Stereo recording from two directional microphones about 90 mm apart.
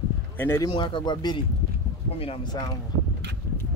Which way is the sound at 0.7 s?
60° left (ahead or behind).